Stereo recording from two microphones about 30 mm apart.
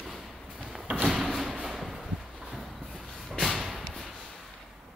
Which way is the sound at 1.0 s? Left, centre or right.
Centre.